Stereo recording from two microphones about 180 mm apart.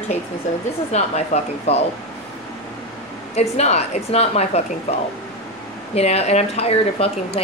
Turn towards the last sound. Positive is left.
turn(degrees=35)  # may be behind; listen again after turning